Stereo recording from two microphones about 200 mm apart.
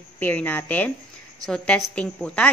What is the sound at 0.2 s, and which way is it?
A woman's voice, 10° left (ahead or behind).